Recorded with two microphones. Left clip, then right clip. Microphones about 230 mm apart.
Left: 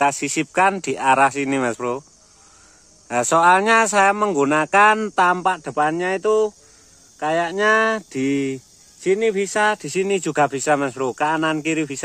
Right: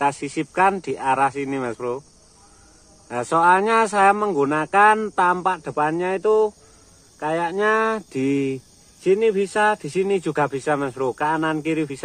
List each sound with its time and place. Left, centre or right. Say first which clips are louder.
0.0 s speech: left 3 dB; left
3.1 s speech: left 2 dB; left